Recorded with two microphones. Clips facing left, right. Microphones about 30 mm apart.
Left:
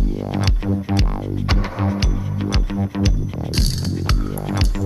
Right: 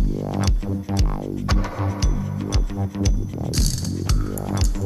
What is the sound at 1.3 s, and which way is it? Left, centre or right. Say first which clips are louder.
Music: left 2 dB; left.